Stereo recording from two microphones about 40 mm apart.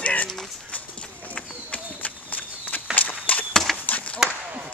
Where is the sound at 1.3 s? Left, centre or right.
Left.